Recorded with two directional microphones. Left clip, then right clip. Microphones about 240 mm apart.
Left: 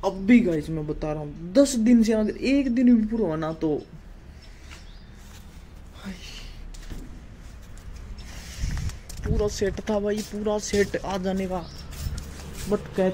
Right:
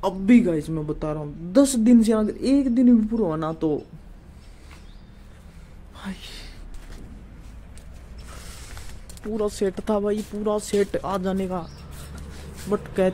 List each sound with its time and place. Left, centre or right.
0.0 s a woman's voice: centre
5.9 s a sound: centre
9.4 s a woman's voice: centre
12.6 s speech: centre